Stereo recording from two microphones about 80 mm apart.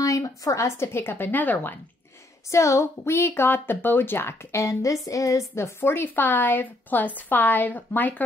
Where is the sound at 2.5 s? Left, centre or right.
Left.